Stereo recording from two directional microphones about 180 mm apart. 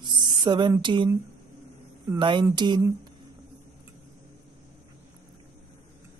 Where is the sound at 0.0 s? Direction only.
25° right (ahead or behind).